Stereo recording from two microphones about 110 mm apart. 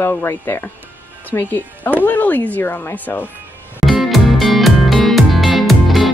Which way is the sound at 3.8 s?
Centre (ahead or behind).